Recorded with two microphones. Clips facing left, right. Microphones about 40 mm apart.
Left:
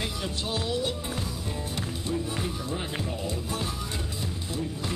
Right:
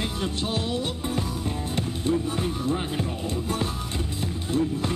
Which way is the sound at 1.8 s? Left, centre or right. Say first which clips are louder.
Right 7 dB; right.